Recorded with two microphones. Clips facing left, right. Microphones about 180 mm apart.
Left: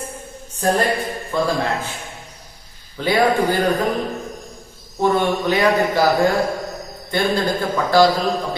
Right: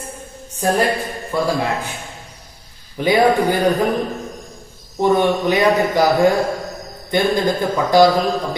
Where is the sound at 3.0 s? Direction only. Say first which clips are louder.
Right 2 dB; 15° right (ahead or behind).